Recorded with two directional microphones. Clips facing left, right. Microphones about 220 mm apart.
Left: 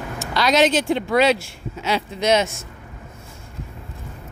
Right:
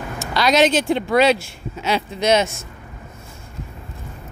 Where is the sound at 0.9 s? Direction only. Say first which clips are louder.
Right 1 dB; 35° right (ahead or behind).